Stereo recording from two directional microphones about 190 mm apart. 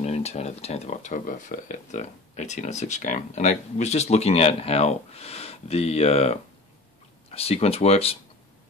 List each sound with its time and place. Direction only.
0.0 s speech: 35° left (ahead or behind)